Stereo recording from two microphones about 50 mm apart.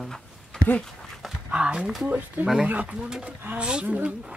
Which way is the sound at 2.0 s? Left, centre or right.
Right.